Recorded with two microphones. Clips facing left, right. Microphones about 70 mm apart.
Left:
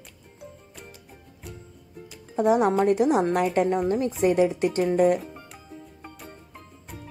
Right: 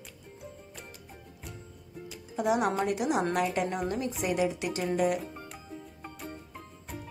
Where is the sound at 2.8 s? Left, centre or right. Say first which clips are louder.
Left 8 dB; left.